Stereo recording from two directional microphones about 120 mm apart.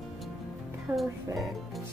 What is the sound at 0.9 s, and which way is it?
Speech, 15° right (ahead or behind).